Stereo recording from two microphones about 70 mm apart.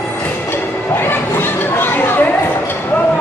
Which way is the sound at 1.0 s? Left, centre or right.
Left.